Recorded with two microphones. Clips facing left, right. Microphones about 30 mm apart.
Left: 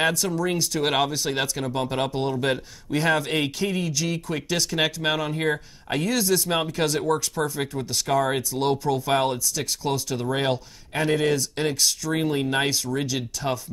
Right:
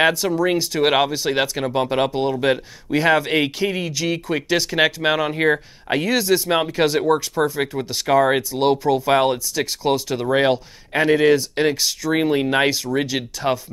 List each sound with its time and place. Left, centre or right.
0.0 s speech: right